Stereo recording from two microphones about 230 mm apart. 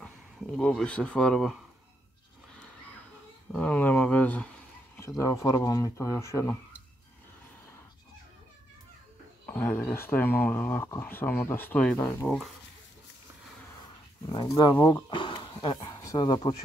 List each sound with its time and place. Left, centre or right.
0.6 s speech: centre
3.5 s speech: centre
9.5 s speech: centre
14.2 s speech: centre